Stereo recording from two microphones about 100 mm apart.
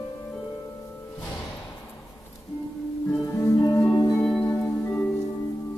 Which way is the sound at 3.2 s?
30° left (ahead or behind).